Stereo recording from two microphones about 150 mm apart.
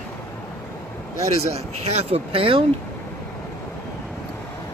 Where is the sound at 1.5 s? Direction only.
45° right (ahead or behind).